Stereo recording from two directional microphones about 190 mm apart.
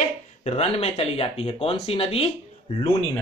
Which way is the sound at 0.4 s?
35° left (ahead or behind).